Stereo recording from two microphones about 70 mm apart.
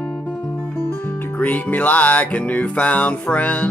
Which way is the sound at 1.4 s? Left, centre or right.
Left.